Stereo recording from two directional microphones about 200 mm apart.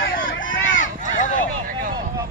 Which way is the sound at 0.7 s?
40° left (ahead or behind).